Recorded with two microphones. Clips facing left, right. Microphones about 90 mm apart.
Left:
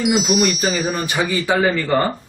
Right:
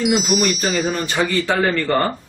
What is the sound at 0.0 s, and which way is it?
Speech, centre (ahead or behind).